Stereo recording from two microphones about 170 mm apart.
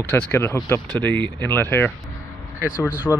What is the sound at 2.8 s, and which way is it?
Speech, 10° right (ahead or behind).